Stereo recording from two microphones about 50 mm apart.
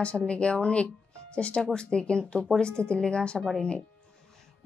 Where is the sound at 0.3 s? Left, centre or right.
Left.